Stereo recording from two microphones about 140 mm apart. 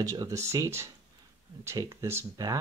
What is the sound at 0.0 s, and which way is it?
Speech, 25° right (ahead or behind).